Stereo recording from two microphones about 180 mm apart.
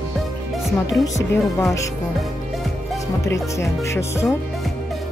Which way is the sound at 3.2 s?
15° left (ahead or behind).